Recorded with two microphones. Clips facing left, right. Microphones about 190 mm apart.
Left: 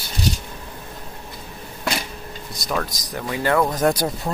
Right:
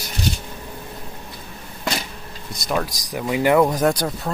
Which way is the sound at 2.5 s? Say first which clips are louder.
Right 2 dB; centre (ahead or behind).